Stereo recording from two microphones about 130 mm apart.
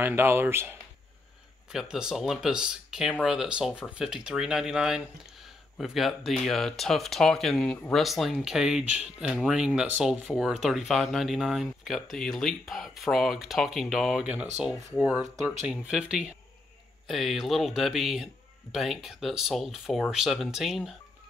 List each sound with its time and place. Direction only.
0.0 s speech: 15° right (ahead or behind)
1.7 s a man's voice: 5° right (ahead or behind)